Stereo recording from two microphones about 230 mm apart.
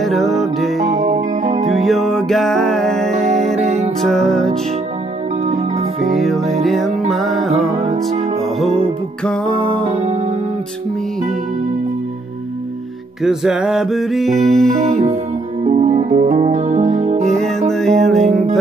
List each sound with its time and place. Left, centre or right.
0.0 s music: centre
1.0 s music: right
1.8 s music: centre
5.4 s music: right
6.1 s music: centre
7.7 s music: right
9.7 s music: right
13.2 s music: centre
14.8 s music: right
17.6 s music: centre